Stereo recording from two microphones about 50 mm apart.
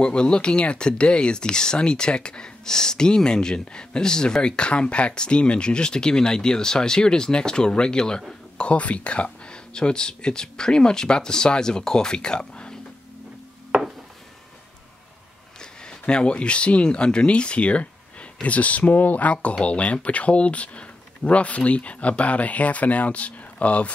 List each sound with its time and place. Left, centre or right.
0.0 s speech: centre
13.7 s wood: centre
15.6 s speech: centre